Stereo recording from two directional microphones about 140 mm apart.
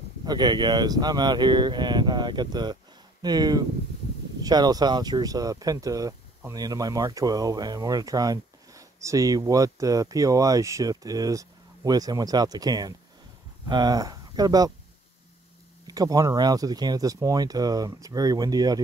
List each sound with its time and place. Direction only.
0.2 s speech: 30° right (ahead or behind)
15.9 s speech: 25° right (ahead or behind)